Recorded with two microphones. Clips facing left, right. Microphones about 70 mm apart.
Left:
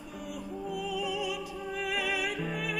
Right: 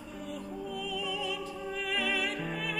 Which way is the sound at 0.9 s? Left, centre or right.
Centre.